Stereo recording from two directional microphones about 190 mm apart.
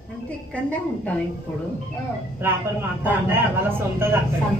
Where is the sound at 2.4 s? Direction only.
10° right (ahead or behind).